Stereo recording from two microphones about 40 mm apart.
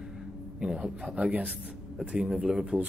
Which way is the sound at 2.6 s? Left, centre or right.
Right.